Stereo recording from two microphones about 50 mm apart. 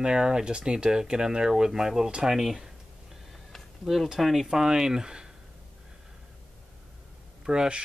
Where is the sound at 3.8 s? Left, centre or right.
Centre.